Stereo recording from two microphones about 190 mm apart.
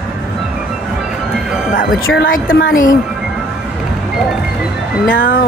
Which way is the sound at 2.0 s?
90° left.